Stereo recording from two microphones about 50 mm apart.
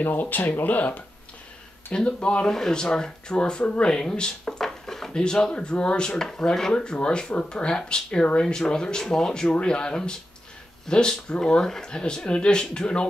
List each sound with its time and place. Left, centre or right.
0.0 s speech: left
1.9 s speech: left